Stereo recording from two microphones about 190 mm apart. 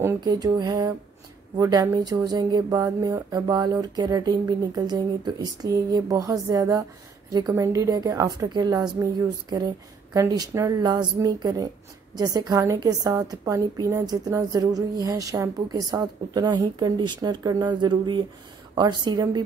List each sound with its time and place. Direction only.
0.0 s a woman's voice: 15° right (ahead or behind)